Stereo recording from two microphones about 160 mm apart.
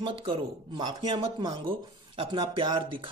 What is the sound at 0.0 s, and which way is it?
Speech, 35° right (ahead or behind).